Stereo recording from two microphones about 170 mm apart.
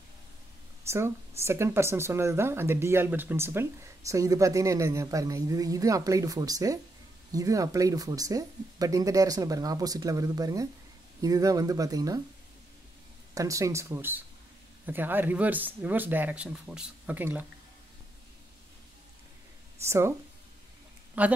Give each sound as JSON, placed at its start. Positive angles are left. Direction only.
{"t": 0.8, "sound": "a woman's voice", "side_deg": -15}
{"t": 13.3, "sound": "speech", "side_deg": -20}
{"t": 19.9, "sound": "speech", "side_deg": -15}
{"t": 21.2, "sound": "speech", "side_deg": -10}